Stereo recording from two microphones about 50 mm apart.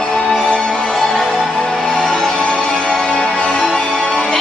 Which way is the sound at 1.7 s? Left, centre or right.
Centre.